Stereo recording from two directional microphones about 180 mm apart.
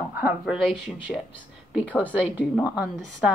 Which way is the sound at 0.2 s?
5° right (ahead or behind).